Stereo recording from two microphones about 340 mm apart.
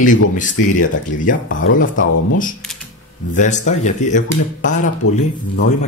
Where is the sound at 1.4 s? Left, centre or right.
Left.